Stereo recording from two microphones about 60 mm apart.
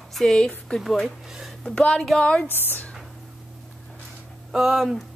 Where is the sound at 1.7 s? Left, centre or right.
Left.